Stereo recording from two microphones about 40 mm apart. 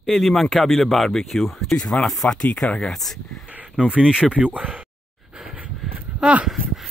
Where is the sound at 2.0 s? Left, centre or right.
Centre.